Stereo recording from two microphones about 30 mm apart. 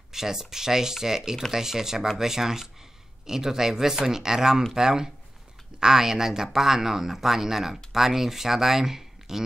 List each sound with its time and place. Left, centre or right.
0.1 s speech: centre